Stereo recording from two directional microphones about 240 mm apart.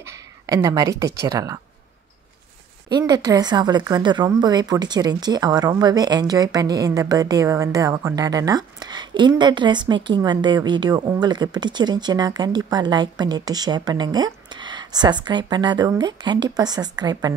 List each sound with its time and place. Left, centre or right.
0.0 s speech: centre
2.9 s a woman's voice: centre